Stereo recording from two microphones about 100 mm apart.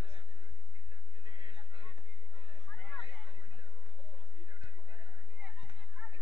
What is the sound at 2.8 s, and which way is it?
Chatter, 70° right (ahead or behind).